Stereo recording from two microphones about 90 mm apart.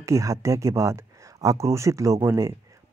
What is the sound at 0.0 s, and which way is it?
Speech, 35° right (ahead or behind).